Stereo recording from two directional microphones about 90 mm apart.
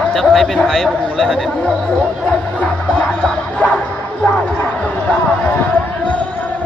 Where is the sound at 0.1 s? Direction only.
Centre (ahead or behind).